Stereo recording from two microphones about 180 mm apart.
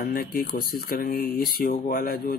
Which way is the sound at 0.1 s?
55° left (ahead or behind).